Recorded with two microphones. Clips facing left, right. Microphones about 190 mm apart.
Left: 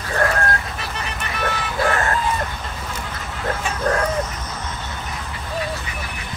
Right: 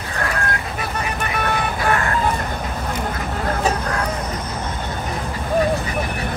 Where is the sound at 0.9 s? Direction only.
50° right (ahead or behind).